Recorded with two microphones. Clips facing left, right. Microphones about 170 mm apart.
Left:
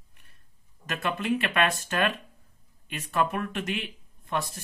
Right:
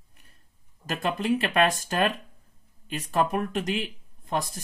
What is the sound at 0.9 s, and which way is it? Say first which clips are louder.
Speech: right 2 dB; 35° right (ahead or behind).